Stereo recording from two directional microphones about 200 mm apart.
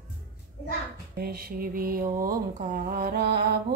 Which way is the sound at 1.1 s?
50° right (ahead or behind).